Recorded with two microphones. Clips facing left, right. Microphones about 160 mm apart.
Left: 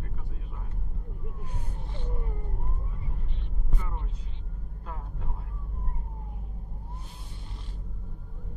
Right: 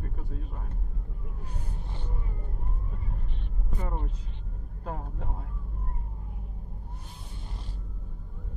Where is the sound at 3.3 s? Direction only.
45° right (ahead or behind).